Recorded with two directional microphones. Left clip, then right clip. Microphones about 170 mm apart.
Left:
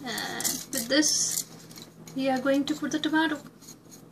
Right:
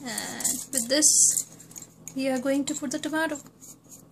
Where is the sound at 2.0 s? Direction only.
70° right (ahead or behind).